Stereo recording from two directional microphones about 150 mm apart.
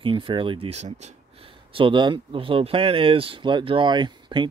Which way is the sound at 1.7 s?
35° right (ahead or behind).